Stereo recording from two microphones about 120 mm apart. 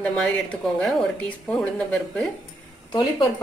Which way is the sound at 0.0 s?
10° left (ahead or behind).